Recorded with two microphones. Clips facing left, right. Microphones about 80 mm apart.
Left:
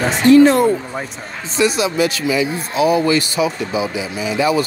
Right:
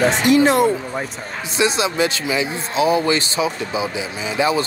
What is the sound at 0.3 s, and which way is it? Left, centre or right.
Speech, centre.